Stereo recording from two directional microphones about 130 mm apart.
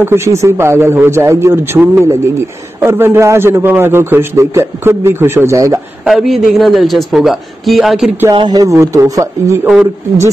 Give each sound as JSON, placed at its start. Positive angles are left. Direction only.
{"t": 0.0, "sound": "a man's voice", "side_deg": -20}
{"t": 6.0, "sound": "a man's voice", "side_deg": 0}
{"t": 8.3, "sound": "a man's voice", "side_deg": -30}